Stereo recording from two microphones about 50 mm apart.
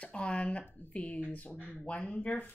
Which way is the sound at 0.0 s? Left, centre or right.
Left.